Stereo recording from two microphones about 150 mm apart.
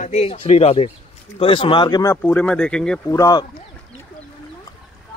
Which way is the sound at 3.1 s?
25° left (ahead or behind).